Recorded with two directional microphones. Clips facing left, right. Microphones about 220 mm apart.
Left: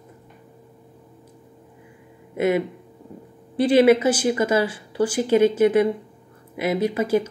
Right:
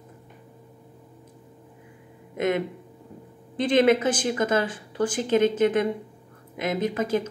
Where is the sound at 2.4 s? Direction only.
5° left (ahead or behind).